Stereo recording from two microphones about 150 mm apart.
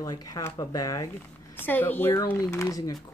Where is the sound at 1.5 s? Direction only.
15° left (ahead or behind).